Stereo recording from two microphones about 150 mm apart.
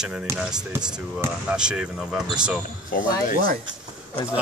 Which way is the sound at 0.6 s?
25° right (ahead or behind).